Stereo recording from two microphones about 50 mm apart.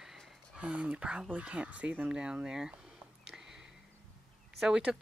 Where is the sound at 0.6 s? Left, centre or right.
Right.